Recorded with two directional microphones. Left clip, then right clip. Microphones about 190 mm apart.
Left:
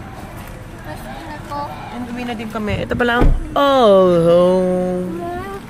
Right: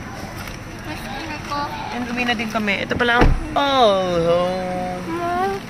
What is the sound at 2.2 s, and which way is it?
Speech, 10° left (ahead or behind).